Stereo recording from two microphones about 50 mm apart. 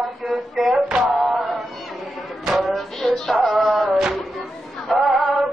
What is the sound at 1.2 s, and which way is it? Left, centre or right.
Cat, centre.